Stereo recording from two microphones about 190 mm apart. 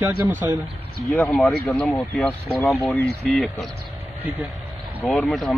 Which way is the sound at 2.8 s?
Centre (ahead or behind).